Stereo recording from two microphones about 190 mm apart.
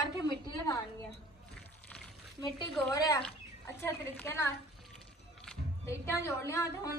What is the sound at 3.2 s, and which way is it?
Speech, 15° left (ahead or behind).